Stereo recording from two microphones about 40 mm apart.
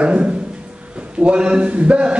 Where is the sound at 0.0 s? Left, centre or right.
Right.